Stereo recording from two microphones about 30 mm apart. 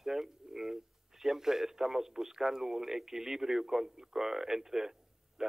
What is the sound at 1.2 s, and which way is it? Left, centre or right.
A man's voice, centre.